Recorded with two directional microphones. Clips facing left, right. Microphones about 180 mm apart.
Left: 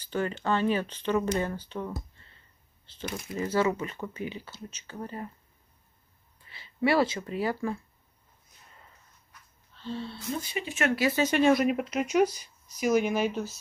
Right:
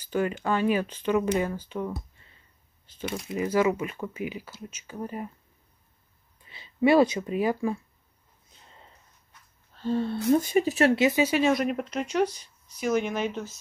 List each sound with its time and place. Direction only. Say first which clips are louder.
0.0 s speech: right 3 dB; 10° right (ahead or behind)
3.1 s speech: right 3 dB; 20° right (ahead or behind)
6.4 s speech: right 5 dB; 20° right (ahead or behind)
8.5 s a sound: right 3 dB; 25° right (ahead or behind)
9.8 s speech: right 9 dB; 50° right (ahead or behind)
11.0 s speech: right 2 dB; 15° right (ahead or behind); by 12.3 s 10° left (ahead or behind)
12.3 s speech: right 1 dB; 40° left (ahead or behind)
12.8 s speech: left 1 dB; 10° left (ahead or behind)